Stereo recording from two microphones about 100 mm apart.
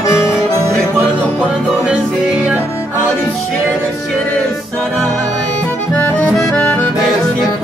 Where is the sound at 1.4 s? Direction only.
10° right (ahead or behind).